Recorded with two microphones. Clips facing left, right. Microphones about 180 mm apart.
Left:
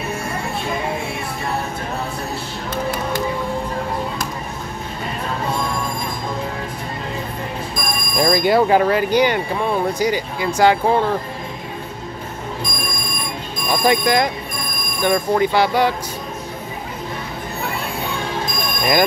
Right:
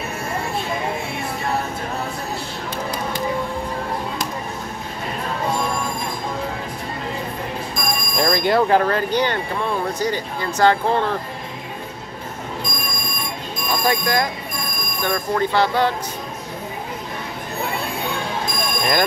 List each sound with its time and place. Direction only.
8.2 s speech: 5° left (ahead or behind)
13.8 s speech: 20° left (ahead or behind)